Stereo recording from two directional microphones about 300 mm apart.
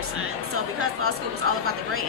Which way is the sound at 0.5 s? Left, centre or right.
Right.